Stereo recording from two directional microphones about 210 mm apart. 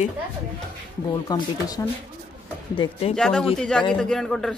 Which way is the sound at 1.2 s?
20° left (ahead or behind).